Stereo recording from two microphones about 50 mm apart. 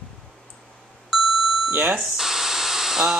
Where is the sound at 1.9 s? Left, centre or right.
Centre.